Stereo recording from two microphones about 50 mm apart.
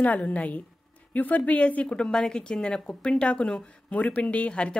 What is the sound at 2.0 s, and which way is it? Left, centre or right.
A woman's voice, centre.